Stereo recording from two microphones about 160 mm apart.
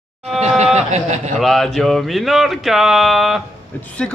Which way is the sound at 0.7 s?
45° right (ahead or behind).